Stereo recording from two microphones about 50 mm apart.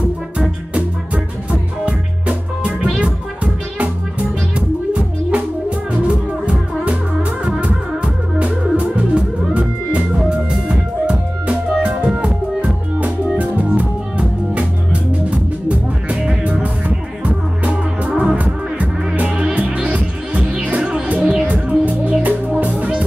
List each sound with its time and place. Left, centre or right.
0.7 s music: centre
5.9 s music: right
7.2 s music: centre
7.6 s music: right
13.6 s music: right
21.6 s music: right